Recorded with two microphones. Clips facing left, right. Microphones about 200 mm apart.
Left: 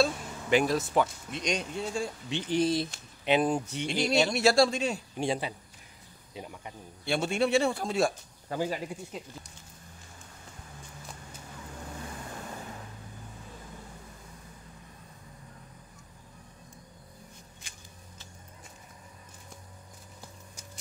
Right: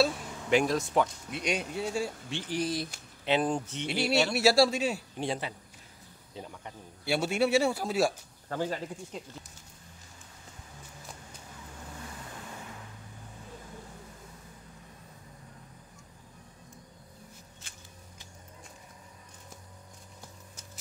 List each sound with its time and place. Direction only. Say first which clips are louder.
0.0 s a sound: even; centre (ahead or behind)
1.3 s a man's voice: even; 5° right (ahead or behind)
2.2 s speech: left 5 dB; 20° left (ahead or behind)
3.3 s speech: left 2 dB; 10° left (ahead or behind)
3.8 s a man's voice: left 1 dB; 5° right (ahead or behind)
5.1 s speech: left 3 dB; 15° left (ahead or behind)
7.1 s a man's voice: even; 5° right (ahead or behind)
8.5 s speech: left 1 dB; 10° left (ahead or behind)